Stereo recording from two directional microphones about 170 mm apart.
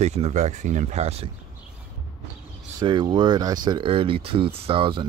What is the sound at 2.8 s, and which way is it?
Speech, 25° right (ahead or behind).